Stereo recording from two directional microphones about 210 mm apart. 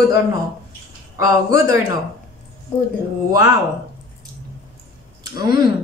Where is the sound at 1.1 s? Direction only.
15° right (ahead or behind).